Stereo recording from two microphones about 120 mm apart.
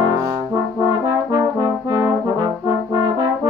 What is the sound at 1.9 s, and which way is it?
Brass instrument, 35° right (ahead or behind).